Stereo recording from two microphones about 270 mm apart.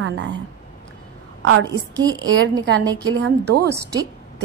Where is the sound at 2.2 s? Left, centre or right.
Right.